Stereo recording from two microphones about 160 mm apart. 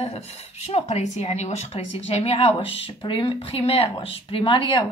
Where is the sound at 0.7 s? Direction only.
40° left (ahead or behind).